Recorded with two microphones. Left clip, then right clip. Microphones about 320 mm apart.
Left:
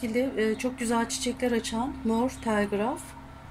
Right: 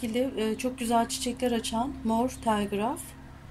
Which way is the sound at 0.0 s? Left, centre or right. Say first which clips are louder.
Left 2 dB; centre.